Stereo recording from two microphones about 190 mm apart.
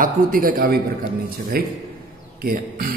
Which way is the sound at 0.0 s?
45° right (ahead or behind).